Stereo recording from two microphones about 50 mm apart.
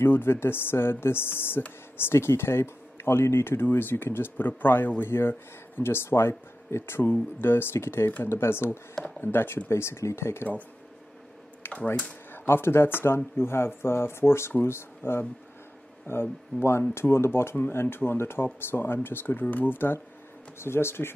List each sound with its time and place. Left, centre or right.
0.0 s speech: left
9.7 s speech: left
11.6 s typing: left
12.3 s speech: left
20.5 s speech: left